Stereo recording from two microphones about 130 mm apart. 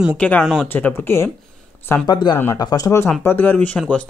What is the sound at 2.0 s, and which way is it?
Speech, 35° left (ahead or behind).